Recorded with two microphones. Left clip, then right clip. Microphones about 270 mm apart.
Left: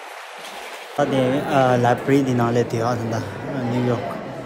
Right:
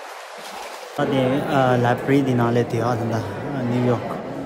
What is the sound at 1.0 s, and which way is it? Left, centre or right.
Speech, centre.